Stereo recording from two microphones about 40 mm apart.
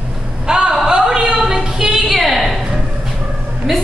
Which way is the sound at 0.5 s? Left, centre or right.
Right.